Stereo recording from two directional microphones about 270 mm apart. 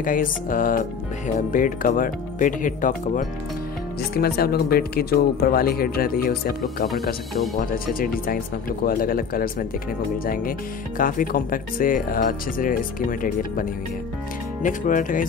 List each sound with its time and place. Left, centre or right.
0.0 s speech: left